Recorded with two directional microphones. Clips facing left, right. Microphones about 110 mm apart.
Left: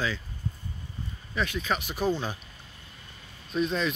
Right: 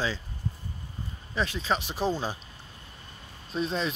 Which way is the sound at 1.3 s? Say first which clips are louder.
Right 1 dB; 30° right (ahead or behind).